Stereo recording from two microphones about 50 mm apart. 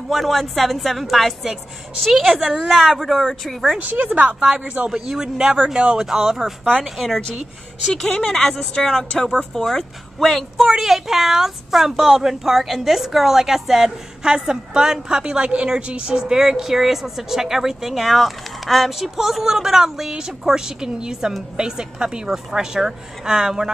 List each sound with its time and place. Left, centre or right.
0.1 s a woman's voice: centre
4.1 s a woman's voice: right
4.6 s a woman's voice: right
4.9 s speech: centre
7.9 s speech: centre
9.7 s a woman's voice: centre
10.6 s speech: centre